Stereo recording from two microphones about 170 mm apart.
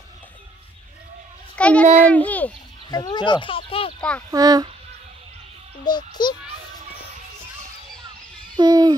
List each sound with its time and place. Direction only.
1.6 s a child's voice: 5° left (ahead or behind)
2.9 s speech: 25° left (ahead or behind)
4.3 s a child's voice: 20° right (ahead or behind)
5.9 s speech: 25° left (ahead or behind)
8.5 s owl: 25° right (ahead or behind)